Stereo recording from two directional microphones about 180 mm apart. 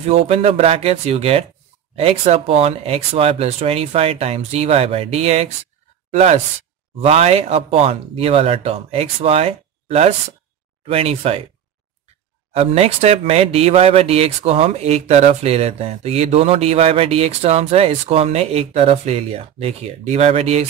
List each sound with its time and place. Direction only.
0.0 s speech: 35° right (ahead or behind)
12.5 s speech: 35° right (ahead or behind)